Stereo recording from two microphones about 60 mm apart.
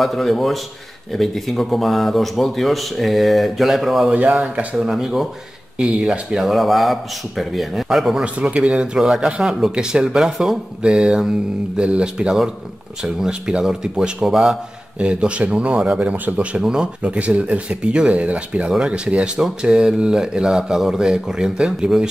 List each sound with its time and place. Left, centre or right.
0.0 s speech: centre
4.1 s speech: right
4.7 s speech: centre
8.2 s speech: centre